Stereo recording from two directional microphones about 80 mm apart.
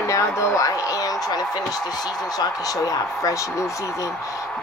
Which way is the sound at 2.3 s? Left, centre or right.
Left.